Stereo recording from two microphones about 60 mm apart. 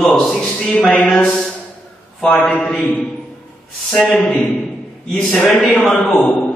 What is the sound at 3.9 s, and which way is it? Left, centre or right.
A man's voice, centre.